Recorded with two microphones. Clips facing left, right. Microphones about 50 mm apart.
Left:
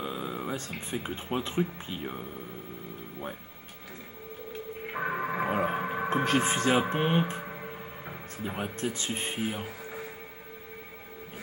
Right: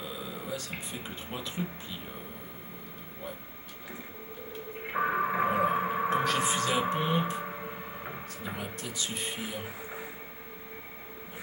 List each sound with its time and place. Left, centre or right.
0.0 s a sound: left
0.7 s speech: left
4.9 s music: centre
5.5 s a sound: centre
5.8 s music: centre
6.2 s speech: left
7.4 s music: centre
8.5 s speech: left
9.4 s speech: left
9.7 s music: centre